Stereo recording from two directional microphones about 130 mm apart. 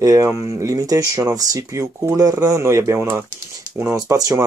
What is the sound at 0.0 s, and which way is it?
Speech, 25° right (ahead or behind).